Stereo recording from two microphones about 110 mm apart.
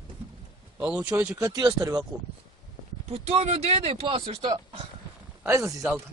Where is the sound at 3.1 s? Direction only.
70° right (ahead or behind); by 4.5 s 55° right (ahead or behind).